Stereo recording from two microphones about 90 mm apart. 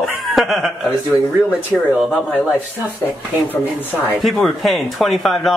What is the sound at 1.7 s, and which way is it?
Speech, 25° left (ahead or behind).